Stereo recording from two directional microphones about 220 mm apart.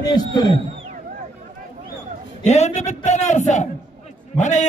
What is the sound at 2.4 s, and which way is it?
A man's voice, 30° left (ahead or behind).